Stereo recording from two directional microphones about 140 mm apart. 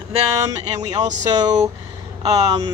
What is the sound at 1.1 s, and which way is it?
Speech, 55° right (ahead or behind).